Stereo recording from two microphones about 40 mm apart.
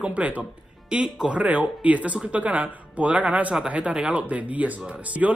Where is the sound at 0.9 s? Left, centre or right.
Right.